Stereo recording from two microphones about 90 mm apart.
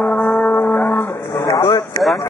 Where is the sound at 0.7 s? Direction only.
20° left (ahead or behind).